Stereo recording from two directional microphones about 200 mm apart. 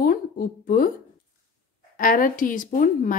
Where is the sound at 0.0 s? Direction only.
45° left (ahead or behind).